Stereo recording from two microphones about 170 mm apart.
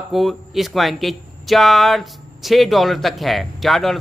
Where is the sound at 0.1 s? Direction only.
Centre (ahead or behind).